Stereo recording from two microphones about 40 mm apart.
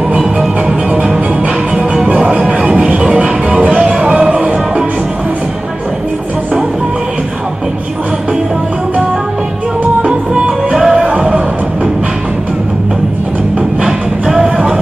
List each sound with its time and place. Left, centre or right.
0.7 s music: right
10.7 s music: centre
13.8 s music: centre